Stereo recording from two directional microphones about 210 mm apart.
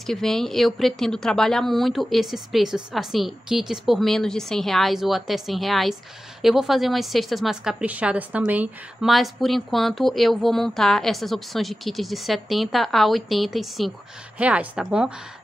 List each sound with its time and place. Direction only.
0.0 s a woman's voice: centre (ahead or behind)